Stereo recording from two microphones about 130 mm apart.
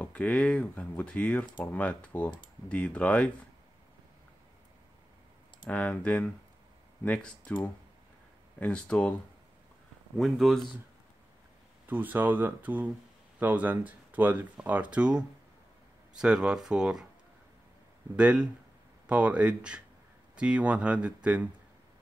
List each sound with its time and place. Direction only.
0.0 s speech: 10° left (ahead or behind)
5.7 s speech: 10° left (ahead or behind)
10.1 s speech: centre (ahead or behind)
11.9 s speech: 15° right (ahead or behind)
18.1 s speech: 10° right (ahead or behind)